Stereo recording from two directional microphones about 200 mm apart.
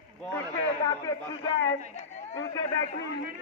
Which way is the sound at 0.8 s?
15° left (ahead or behind).